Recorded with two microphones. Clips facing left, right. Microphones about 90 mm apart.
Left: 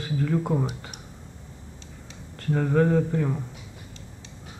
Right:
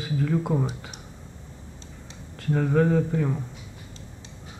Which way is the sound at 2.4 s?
Centre (ahead or behind).